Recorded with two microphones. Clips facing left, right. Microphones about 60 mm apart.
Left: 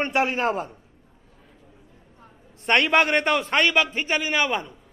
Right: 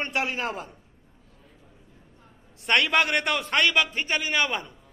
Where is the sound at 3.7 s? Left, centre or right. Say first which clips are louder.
Left 2 dB; centre.